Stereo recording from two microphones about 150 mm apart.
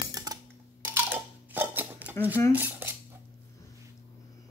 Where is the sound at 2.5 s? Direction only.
15° right (ahead or behind).